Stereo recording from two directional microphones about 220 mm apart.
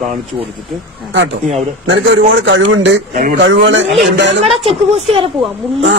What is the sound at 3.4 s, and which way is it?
Speech, 55° right (ahead or behind).